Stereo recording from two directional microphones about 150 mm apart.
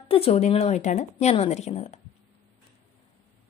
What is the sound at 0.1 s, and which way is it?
A woman's voice, 45° left (ahead or behind).